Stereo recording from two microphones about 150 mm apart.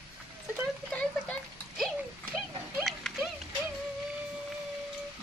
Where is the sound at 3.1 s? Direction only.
Centre (ahead or behind).